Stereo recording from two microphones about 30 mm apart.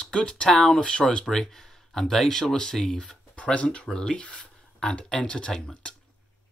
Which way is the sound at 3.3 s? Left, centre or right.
Left.